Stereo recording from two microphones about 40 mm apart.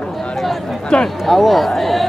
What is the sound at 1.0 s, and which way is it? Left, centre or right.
Speech, centre.